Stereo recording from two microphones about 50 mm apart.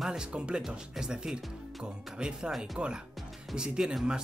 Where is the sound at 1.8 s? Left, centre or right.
Centre.